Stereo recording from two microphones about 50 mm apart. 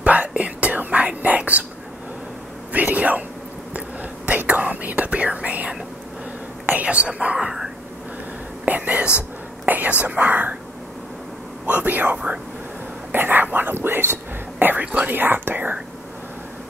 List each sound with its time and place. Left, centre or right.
0.0 s whispering: right
2.7 s whispering: right
4.3 s whispering: right; by 7.7 s centre
8.6 s whispering: right
11.6 s a sound: right
13.1 s whispering: right